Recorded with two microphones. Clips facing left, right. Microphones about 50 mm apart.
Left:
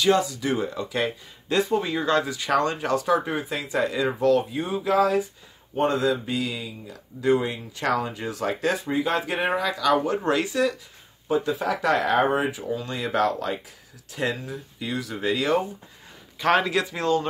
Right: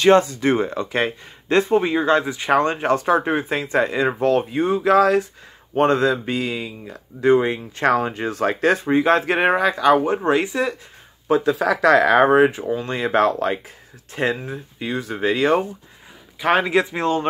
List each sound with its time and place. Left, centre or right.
0.0 s speech: right
5.8 s speech: right
11.2 s speech: right
16.3 s speech: centre